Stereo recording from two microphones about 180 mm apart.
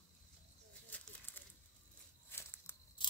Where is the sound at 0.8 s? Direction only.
10° left (ahead or behind).